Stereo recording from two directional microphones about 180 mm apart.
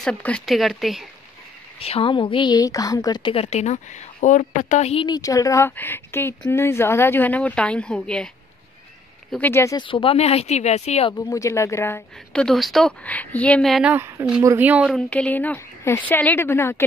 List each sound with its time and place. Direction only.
0.0 s speech: 5° left (ahead or behind)
1.8 s a woman's voice: 30° left (ahead or behind)
5.0 s a woman's voice: 20° left (ahead or behind); by 8.3 s 5° left (ahead or behind)
9.3 s a woman's voice: 10° left (ahead or behind)
9.8 s a woman's voice: 30° left (ahead or behind)
11.2 s a woman's voice: 20° left (ahead or behind); by 13.9 s centre (ahead or behind)
13.9 s speech: 15° right (ahead or behind)
14.9 s a woman's voice: 5° left (ahead or behind)